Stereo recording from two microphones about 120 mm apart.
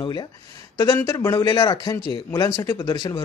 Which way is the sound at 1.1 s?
25° left (ahead or behind).